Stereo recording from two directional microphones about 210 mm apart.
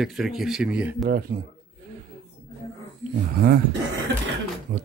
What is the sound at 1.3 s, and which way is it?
Speech, 45° right (ahead or behind).